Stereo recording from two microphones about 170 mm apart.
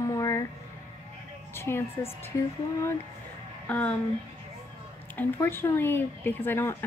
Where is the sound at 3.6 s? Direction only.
10° left (ahead or behind).